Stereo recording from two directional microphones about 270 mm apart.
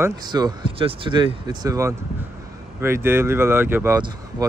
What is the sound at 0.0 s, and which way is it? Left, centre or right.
Speech, centre.